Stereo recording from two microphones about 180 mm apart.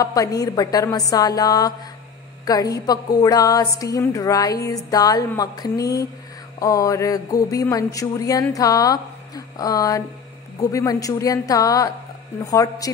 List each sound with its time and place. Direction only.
0.0 s speech: 20° left (ahead or behind)